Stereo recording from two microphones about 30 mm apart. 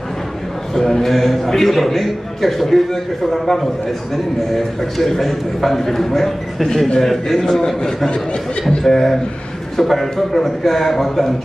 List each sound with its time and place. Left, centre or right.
0.7 s a man's voice: left
1.0 s a man's voice: centre